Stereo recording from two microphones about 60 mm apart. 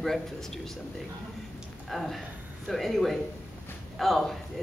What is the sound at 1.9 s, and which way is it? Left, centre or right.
Speech, centre.